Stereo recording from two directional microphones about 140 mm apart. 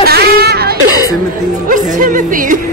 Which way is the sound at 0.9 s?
25° left (ahead or behind).